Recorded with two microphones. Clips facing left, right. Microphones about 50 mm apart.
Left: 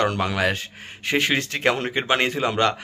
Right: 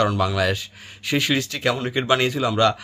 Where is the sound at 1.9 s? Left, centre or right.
Left.